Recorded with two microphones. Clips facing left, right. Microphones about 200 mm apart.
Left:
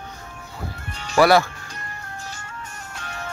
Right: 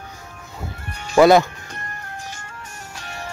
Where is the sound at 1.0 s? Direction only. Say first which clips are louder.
Right 4 dB; 20° right (ahead or behind).